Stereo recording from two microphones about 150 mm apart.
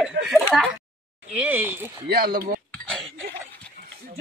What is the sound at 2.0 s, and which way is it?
Speech, 85° right.